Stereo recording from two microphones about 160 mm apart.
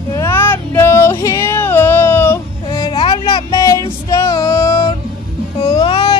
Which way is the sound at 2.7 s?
30° left (ahead or behind).